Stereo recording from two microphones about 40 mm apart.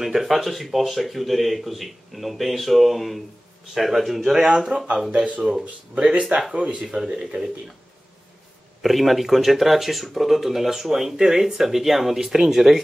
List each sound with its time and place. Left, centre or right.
0.0 s speech: centre
5.1 s speech: right
5.4 s speech: centre
5.9 s speech: right
7.1 s speech: right
8.8 s speech: centre